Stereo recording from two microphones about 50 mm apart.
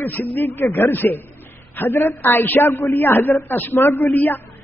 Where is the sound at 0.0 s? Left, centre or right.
Left.